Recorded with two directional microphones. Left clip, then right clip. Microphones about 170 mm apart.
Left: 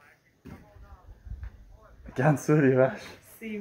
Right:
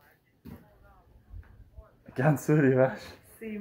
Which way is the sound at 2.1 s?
5° left (ahead or behind).